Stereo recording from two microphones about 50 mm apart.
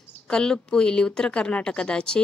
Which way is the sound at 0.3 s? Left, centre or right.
Centre.